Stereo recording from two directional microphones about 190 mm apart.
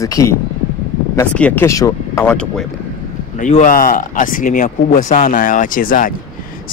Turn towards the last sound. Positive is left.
turn(degrees=45)  # may be behind; listen again after turning